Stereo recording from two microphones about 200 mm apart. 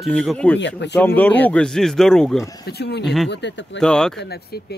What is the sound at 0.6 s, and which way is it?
Speech, 60° left (ahead or behind).